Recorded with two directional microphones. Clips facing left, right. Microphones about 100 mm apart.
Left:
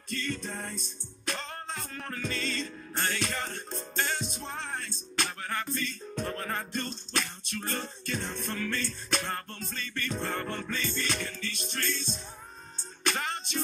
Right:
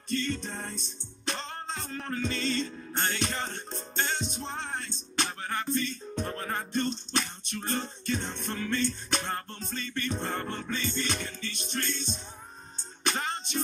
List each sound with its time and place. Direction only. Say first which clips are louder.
0.1 s music: right 3 dB; 25° right (ahead or behind)